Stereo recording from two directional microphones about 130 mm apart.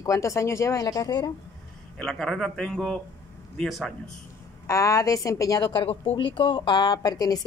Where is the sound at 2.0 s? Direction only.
5° left (ahead or behind).